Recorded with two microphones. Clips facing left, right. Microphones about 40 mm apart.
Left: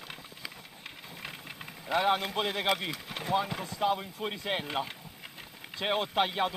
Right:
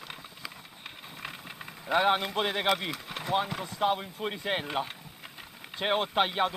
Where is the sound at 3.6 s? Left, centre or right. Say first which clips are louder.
Right 1 dB; right.